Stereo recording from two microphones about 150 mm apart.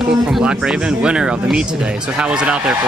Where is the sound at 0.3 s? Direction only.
5° right (ahead or behind).